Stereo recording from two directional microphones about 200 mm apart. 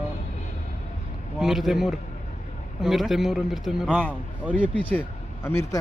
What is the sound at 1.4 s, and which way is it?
A man's voice, centre (ahead or behind).